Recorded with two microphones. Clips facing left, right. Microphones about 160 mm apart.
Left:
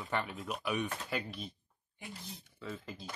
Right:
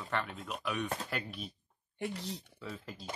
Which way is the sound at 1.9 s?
70° right (ahead or behind).